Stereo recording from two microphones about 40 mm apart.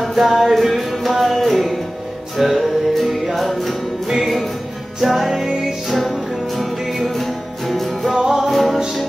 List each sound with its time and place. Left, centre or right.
0.0 s music: centre
8.1 s music: centre